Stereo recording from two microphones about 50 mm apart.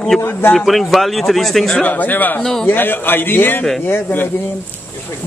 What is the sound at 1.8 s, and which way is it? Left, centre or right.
Speech, left.